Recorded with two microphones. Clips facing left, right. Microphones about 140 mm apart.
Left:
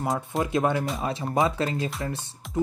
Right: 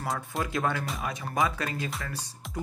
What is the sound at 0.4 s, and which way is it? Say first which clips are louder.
Speech: left 6 dB; 20° left (ahead or behind).